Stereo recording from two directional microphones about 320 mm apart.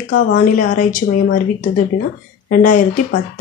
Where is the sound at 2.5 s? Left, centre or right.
Left.